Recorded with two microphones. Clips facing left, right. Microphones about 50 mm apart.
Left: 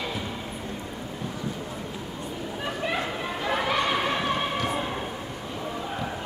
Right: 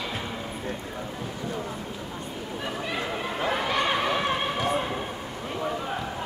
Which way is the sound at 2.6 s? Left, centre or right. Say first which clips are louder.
Left 2 dB; centre.